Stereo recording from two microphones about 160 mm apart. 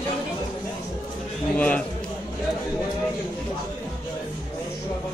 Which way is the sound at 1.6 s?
10° left (ahead or behind).